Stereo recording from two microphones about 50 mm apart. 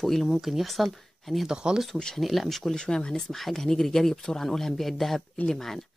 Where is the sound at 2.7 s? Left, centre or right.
Centre.